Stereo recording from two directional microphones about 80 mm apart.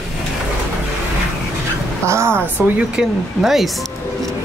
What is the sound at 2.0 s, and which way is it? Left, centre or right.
Speech, right.